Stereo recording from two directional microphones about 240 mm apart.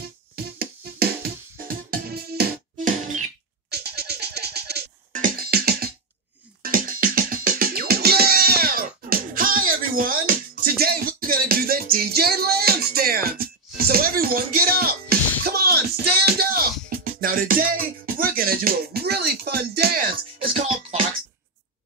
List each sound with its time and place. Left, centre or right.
0.4 s music: right
20.4 s music: right